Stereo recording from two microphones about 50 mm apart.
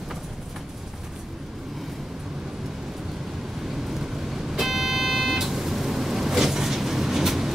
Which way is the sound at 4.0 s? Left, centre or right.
Centre.